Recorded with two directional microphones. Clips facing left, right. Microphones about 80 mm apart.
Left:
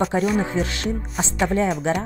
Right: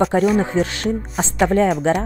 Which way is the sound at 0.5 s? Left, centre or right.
Right.